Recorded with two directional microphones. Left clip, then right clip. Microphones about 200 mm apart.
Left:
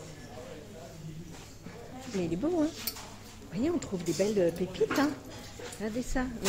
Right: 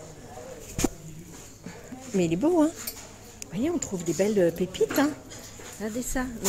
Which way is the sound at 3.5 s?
10° right (ahead or behind).